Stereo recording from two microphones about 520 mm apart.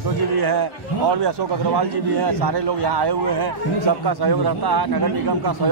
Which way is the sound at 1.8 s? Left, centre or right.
Right.